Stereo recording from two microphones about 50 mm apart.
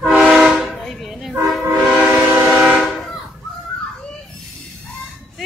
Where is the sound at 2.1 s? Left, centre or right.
Right.